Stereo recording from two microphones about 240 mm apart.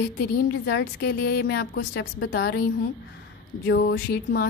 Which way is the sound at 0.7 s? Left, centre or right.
Left.